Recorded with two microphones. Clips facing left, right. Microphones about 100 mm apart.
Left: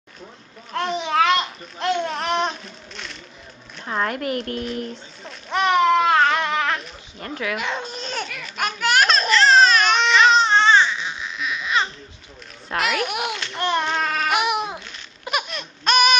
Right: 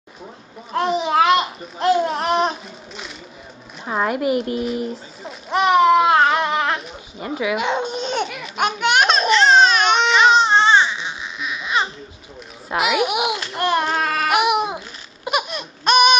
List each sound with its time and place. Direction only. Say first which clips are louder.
0.8 s babbling: right 3 dB; 5° right (ahead or behind)
1.9 s speech: right 5 dB; 5° right (ahead or behind)
3.8 s a sound: right 4 dB; 10° right (ahead or behind)
10.7 s baby cry: right 1 dB; 5° right (ahead or behind)
12.6 s a child's voice: right 4 dB; 5° right (ahead or behind)
13.9 s a sound: right 2 dB; 40° right (ahead or behind)
14.2 s baby cry: right 6 dB; centre (ahead or behind)